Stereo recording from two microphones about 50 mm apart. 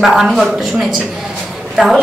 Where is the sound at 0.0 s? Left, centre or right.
Centre.